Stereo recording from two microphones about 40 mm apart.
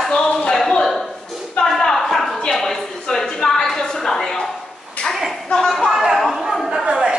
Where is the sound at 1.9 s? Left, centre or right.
Centre.